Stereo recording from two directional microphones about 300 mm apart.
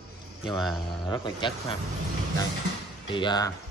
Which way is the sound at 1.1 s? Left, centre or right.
Centre.